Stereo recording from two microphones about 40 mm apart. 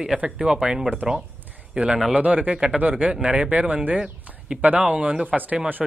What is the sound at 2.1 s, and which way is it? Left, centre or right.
Speech, right.